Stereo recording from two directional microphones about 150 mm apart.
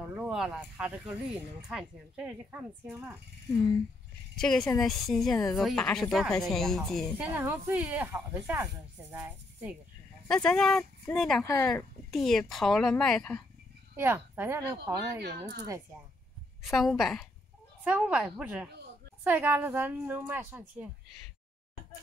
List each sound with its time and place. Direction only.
0.0 s speech: 10° right (ahead or behind)
4.4 s speech: 5° left (ahead or behind)
7.2 s speech: 15° right (ahead or behind)
10.2 s speech: 5° left (ahead or behind)
11.4 s speech: 15° left (ahead or behind)
11.7 s speech: centre (ahead or behind)
13.9 s speech: 15° right (ahead or behind)
16.6 s speech: centre (ahead or behind)